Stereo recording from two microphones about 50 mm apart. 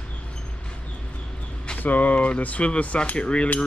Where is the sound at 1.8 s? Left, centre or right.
Left.